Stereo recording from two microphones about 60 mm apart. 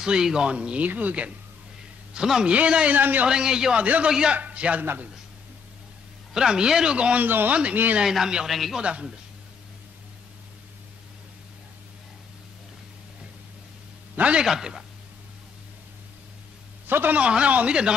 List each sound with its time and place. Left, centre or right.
0.0 s speech: centre
2.1 s speech: centre
3.0 s speech: right
3.3 s speech: centre
3.8 s speech: right
4.1 s a man's voice: centre
6.3 s speech: centre
7.2 s speech: right
8.0 s a man's voice: centre
8.8 s speech: centre
14.1 s a man's voice: right
14.4 s speech: centre
16.8 s a man's voice: right
17.2 s speech: centre